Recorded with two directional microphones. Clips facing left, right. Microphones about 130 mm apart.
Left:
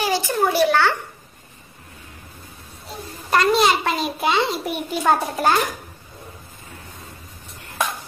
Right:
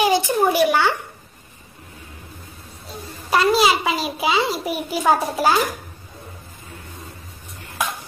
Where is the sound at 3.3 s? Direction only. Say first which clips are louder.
Even; 5° right (ahead or behind).